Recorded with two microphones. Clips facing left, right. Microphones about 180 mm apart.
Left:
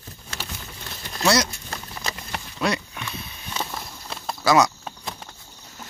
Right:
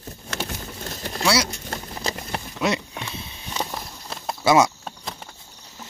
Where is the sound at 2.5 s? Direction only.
25° right (ahead or behind).